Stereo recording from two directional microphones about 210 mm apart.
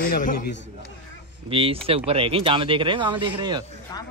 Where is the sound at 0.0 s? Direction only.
40° left (ahead or behind).